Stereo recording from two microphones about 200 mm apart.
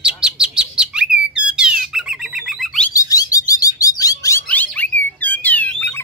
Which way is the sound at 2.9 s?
15° left (ahead or behind).